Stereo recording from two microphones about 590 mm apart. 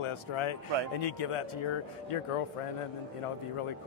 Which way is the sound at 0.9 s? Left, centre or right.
Left.